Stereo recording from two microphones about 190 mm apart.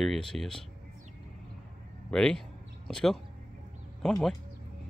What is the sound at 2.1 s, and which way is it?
Speech, 5° left (ahead or behind).